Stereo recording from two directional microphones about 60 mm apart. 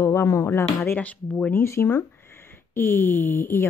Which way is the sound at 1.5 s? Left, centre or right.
Left.